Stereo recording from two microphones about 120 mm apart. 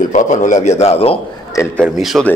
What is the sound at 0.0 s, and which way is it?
A man's voice, 90° left.